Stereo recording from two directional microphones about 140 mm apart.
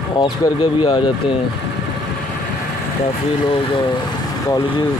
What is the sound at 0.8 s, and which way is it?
Speech, 30° left (ahead or behind).